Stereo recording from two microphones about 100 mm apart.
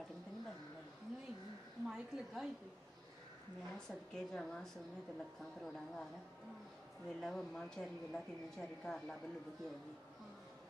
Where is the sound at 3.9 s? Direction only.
5° left (ahead or behind).